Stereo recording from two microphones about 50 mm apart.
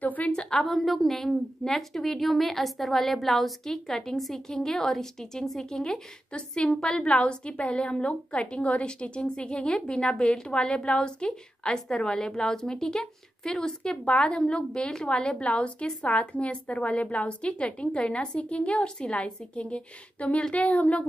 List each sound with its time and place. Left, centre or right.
0.0 s a sound: left
0.3 s a woman's voice: centre
0.6 s a woman's voice: centre; by 21.1 s left